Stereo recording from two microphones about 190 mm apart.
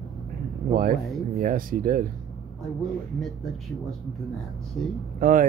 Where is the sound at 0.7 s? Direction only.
50° right (ahead or behind).